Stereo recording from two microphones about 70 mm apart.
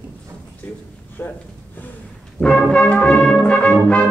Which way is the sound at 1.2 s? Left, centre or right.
Left.